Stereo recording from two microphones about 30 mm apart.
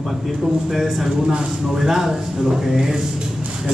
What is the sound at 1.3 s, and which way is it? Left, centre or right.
Speech, right.